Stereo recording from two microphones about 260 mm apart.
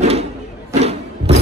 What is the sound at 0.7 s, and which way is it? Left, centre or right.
Music, right.